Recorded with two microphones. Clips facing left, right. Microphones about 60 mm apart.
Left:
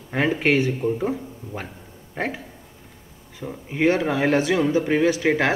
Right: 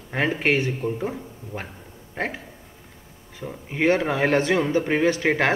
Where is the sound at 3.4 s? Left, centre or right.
Centre.